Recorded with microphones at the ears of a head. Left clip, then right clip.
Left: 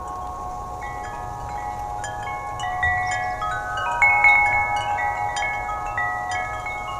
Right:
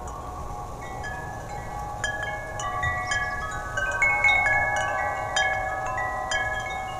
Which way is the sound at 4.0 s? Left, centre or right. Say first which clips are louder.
Left 6 dB; left.